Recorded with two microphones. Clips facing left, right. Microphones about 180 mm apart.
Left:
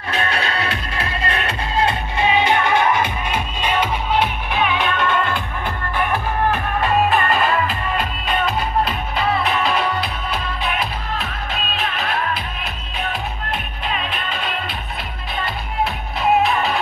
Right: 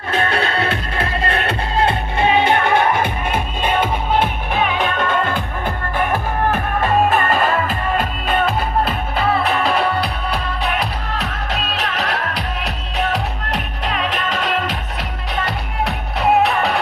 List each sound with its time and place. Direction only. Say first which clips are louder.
0.3 s music: right 4 dB; 55° right (ahead or behind); by 10.9 s 40° right (ahead or behind)
11.1 s music: right 3 dB; 75° right (ahead or behind)
15.3 s music: right 1 dB; 75° right (ahead or behind)